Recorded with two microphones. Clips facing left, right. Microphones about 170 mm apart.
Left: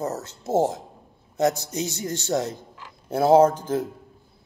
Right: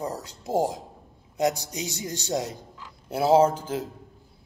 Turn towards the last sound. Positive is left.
turn(degrees=-10)  # may be behind; listen again after turning